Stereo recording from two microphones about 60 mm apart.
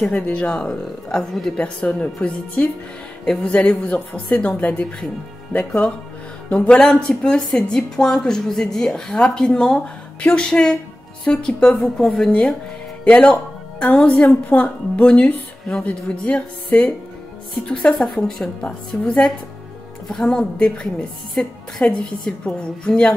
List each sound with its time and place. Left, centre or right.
0.1 s a woman's voice: centre
6.5 s a woman's voice: centre
12.3 s a woman's voice: left
17.9 s a woman's voice: centre
18.6 s a woman's voice: centre
21.8 s a woman's voice: left
22.2 s a woman's voice: centre